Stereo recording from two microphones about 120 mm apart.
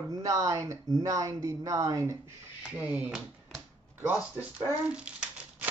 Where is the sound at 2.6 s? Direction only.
10° right (ahead or behind).